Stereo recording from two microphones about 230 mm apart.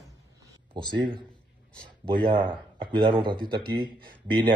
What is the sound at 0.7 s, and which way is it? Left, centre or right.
Speech, centre.